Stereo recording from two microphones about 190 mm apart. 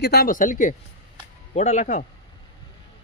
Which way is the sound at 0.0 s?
55° left (ahead or behind).